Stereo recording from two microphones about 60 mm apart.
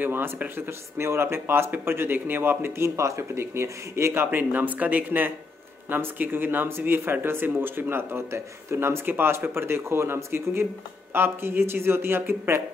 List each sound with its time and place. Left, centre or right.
0.0 s speech: right
3.0 s speech: right